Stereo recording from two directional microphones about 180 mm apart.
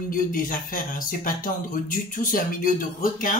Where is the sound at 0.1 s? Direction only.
50° left (ahead or behind).